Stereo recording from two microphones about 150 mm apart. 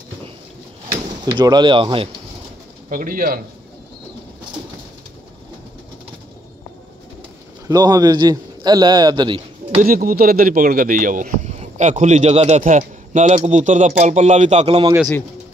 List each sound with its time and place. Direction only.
1.2 s speech: 25° right (ahead or behind)
2.9 s speech: 65° right (ahead or behind)
7.6 s a man's voice: 25° right (ahead or behind)
9.8 s speech: 75° right (ahead or behind); by 14.9 s 45° right (ahead or behind)